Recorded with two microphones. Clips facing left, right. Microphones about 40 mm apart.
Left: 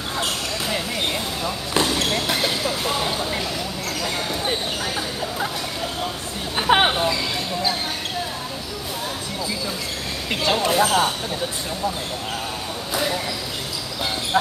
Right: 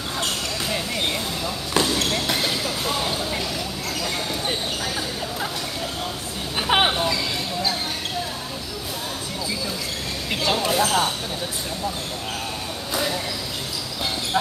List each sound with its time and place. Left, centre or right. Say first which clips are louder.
0.2 s basketball bounce: left 1 dB; centre
4.0 s a sound: left 2 dB; centre
6.7 s hubbub: left 2 dB; centre
10.4 s speech: left 2 dB; centre
12.9 s a sound: left 1 dB; centre
14.3 s speech: left 3 dB; centre